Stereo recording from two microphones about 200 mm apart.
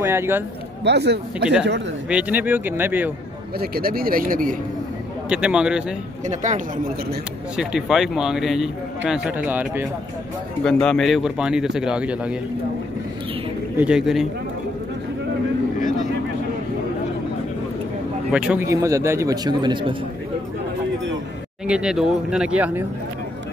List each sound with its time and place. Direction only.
0.0 s a man's voice: 10° right (ahead or behind)
0.8 s speech: 55° right (ahead or behind)
2.0 s a man's voice: 5° right (ahead or behind)
3.5 s a man's voice: 50° right (ahead or behind)
5.3 s a man's voice: 5° right (ahead or behind)
6.2 s speech: 35° right (ahead or behind)
7.5 s a man's voice: centre (ahead or behind)
10.6 s a man's voice: 5° left (ahead or behind)
13.7 s a man's voice: 5° right (ahead or behind)
18.3 s a man's voice: 5° right (ahead or behind); by 20.0 s 25° right (ahead or behind)
21.6 s a man's voice: 5° right (ahead or behind)